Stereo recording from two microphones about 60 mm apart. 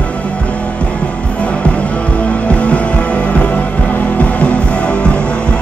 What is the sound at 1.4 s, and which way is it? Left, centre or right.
Music, left.